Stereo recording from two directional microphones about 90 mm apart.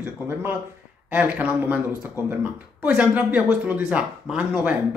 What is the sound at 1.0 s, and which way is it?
Speech, 15° right (ahead or behind).